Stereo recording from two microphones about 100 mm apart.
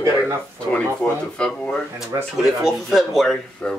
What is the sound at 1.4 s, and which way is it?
Speech, 10° left (ahead or behind).